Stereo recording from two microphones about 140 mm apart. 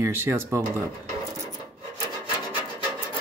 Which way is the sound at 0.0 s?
15° right (ahead or behind).